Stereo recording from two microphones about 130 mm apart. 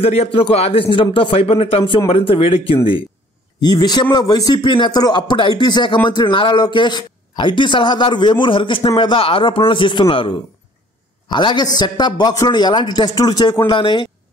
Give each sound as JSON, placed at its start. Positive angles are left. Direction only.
{"t": 0.0, "sound": "speech", "side_deg": 50}
{"t": 3.6, "sound": "a man's voice", "side_deg": 30}